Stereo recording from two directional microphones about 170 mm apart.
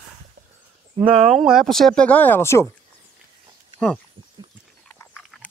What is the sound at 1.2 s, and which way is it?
Speech, centre (ahead or behind).